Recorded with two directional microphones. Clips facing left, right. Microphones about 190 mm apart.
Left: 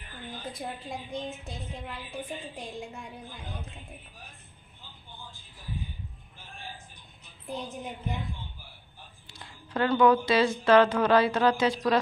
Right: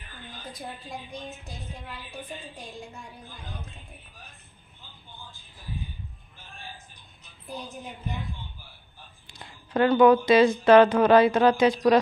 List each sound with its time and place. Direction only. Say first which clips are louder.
0.5 s a woman's voice: left 1 dB; 25° left (ahead or behind)
7.4 s a woman's voice: left 2 dB; 20° left (ahead or behind)
9.3 s a woman's voice: right 5 dB; 15° right (ahead or behind)